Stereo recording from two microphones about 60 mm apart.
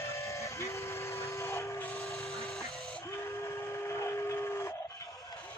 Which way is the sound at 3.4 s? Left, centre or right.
Left.